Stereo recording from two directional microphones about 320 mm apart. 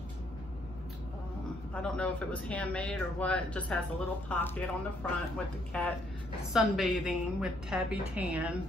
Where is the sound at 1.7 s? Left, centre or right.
Centre.